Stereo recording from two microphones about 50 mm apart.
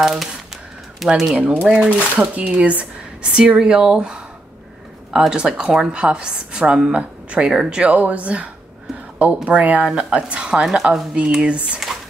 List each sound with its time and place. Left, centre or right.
0.0 s a woman's voice: centre
1.4 s speech: right
5.3 s a woman's voice: centre
7.4 s a woman's voice: centre
8.0 s a woman's voice: right; by 11.1 s centre
11.1 s speech: right